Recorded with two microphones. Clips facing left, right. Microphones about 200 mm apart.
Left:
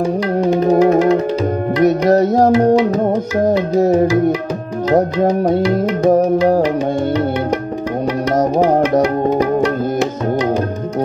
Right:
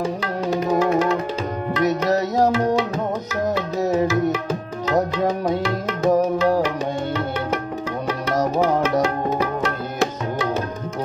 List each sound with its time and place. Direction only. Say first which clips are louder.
0.7 s music: left 7 dB; 40° left (ahead or behind)
1.8 s music: left 8 dB; 50° left (ahead or behind)
6.0 s music: left 5 dB; 45° left (ahead or behind)
8.6 s music: left 6 dB; 50° left (ahead or behind)